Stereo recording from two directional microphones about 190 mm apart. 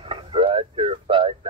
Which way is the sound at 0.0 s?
30° right (ahead or behind).